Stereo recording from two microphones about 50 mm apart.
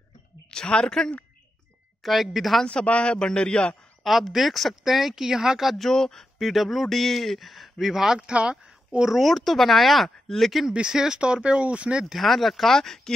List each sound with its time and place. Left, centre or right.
0.5 s a woman's voice: centre
2.0 s speech: centre
2.6 s a man's voice: left
4.0 s speech: centre
5.8 s speech: centre
8.3 s speech: right
9.1 s speech: centre
10.7 s speech: centre
12.2 s speech: centre